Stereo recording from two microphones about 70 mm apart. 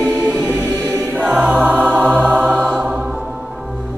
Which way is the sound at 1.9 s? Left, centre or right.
Right.